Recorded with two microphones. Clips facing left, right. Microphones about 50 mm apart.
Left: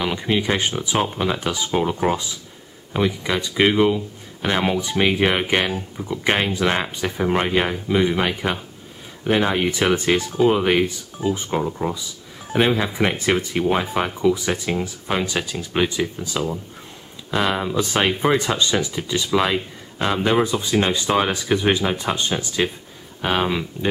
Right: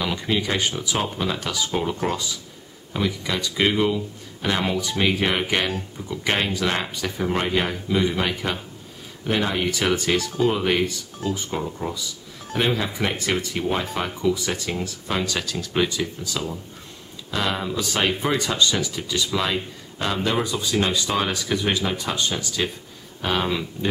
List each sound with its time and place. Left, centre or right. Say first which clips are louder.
0.0 s speech: left 3 dB; centre